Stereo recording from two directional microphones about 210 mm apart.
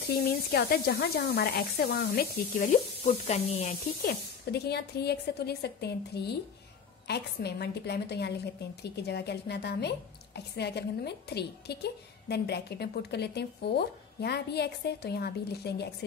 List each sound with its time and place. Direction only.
0.5 s a woman's voice: 50° left (ahead or behind)
3.1 s speech: 30° left (ahead or behind)
4.1 s a woman's voice: 50° left (ahead or behind)